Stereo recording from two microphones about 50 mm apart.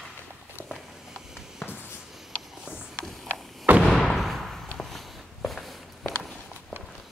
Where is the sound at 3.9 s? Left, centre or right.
Centre.